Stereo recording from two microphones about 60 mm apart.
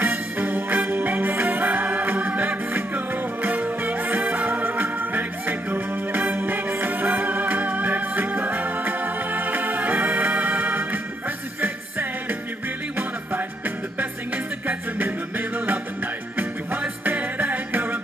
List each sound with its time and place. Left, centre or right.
0.0 s music: right
17.0 s music: right